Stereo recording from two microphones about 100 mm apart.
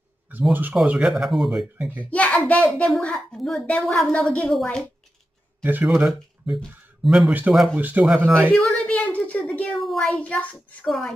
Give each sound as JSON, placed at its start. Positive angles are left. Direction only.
{"t": 0.3, "sound": "speech", "side_deg": -20}
{"t": 0.8, "sound": "speech", "side_deg": -5}
{"t": 2.0, "sound": "a woman's voice", "side_deg": 15}
{"t": 5.6, "sound": "speech", "side_deg": -20}
{"t": 5.9, "sound": "speech", "side_deg": -5}
{"t": 7.7, "sound": "speech", "side_deg": -15}
{"t": 8.3, "sound": "a woman's voice", "side_deg": 10}